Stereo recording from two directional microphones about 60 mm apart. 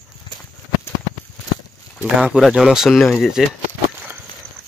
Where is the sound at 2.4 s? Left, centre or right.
Centre.